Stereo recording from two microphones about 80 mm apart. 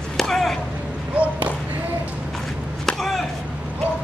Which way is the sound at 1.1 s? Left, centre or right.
Centre.